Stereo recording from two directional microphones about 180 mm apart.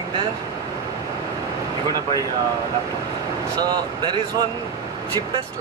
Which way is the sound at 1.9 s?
20° right (ahead or behind).